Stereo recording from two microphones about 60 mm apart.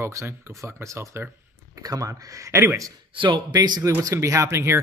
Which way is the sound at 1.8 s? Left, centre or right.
Right.